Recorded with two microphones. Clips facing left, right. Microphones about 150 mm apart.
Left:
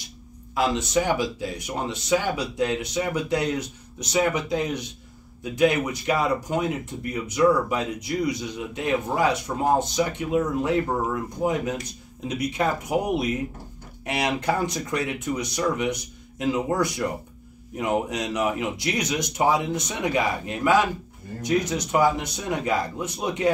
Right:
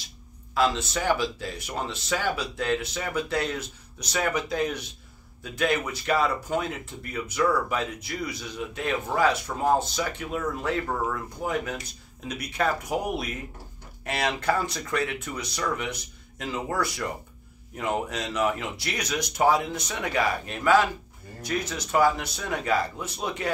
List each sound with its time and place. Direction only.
0.6 s speech: 15° left (ahead or behind)